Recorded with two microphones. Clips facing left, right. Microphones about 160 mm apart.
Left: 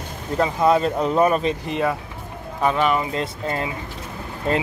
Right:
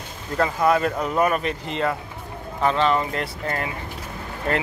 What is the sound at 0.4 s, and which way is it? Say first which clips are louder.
Speech: left 2 dB; 20° left (ahead or behind).